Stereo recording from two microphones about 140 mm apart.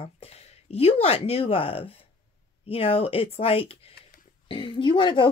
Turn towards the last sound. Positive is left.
turn(degrees=35)  # may be behind; listen again after turning